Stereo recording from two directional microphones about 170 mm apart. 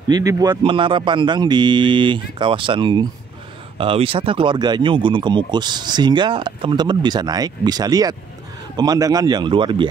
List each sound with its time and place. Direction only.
0.1 s speech: 20° right (ahead or behind)